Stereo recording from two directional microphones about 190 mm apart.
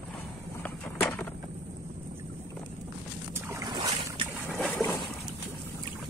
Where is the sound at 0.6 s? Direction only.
10° left (ahead or behind).